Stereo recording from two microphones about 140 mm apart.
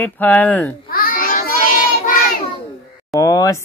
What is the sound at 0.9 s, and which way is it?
Child singing, 90° left.